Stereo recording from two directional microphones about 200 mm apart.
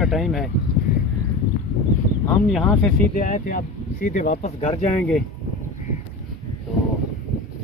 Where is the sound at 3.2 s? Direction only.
40° left (ahead or behind).